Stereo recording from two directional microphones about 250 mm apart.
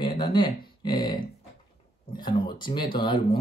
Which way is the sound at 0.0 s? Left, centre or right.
Centre.